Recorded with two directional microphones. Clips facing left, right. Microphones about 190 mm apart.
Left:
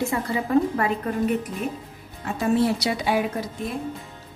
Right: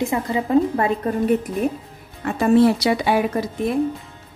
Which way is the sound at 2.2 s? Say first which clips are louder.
Right 6 dB; 65° right (ahead or behind).